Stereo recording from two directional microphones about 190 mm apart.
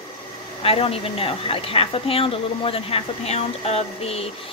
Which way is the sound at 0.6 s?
30° left (ahead or behind).